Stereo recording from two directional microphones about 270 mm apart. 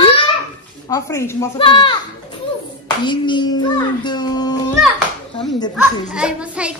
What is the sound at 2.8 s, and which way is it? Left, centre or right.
Child singing, centre.